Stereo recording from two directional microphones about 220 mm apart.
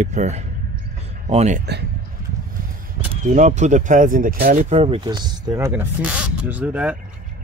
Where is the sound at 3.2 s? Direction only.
35° right (ahead or behind).